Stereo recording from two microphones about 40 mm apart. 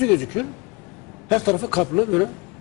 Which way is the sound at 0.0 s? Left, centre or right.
Centre.